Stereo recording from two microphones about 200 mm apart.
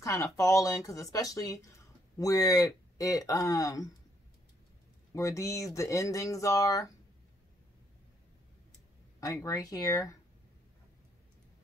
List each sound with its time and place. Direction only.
0.0 s speech: 15° left (ahead or behind)
5.1 s speech: 15° left (ahead or behind)
9.2 s speech: 15° left (ahead or behind)